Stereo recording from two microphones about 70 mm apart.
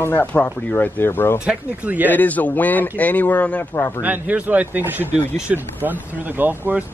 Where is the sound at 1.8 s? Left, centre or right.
Right.